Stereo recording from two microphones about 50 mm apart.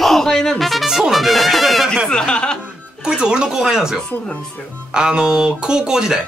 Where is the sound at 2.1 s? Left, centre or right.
Centre.